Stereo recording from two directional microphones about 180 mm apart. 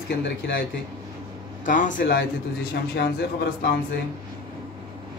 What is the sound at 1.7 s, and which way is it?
A man's voice, 45° left (ahead or behind).